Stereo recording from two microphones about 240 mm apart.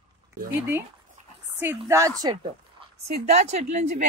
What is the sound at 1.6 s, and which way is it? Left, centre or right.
Speech, centre.